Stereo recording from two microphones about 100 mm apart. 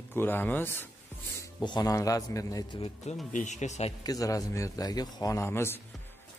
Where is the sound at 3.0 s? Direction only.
90° left.